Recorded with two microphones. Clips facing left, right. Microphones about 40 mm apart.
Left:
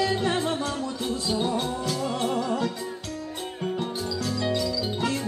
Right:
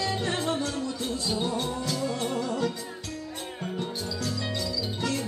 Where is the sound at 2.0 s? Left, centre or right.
Left.